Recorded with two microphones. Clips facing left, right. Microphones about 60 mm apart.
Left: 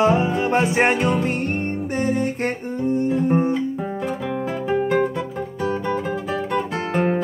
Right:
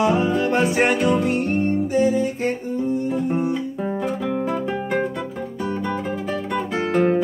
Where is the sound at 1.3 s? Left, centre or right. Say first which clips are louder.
Right 3 dB; left.